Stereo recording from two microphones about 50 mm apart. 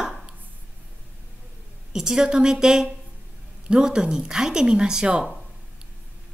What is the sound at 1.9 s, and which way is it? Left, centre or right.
Speech, centre.